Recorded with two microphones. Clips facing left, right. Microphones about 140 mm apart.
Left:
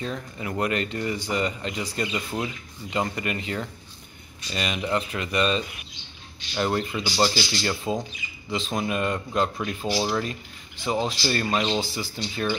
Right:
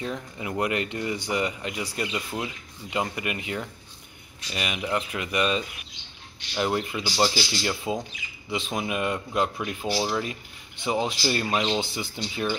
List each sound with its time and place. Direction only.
0.0 s speech: 15° right (ahead or behind)
6.6 s speech: 10° right (ahead or behind)
9.9 s speech: 5° left (ahead or behind)
10.8 s speech: 15° right (ahead or behind)